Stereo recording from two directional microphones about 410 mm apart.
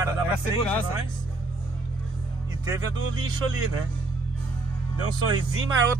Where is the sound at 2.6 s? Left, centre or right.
Centre.